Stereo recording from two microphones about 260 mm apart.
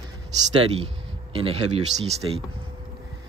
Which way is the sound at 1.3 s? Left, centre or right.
Right.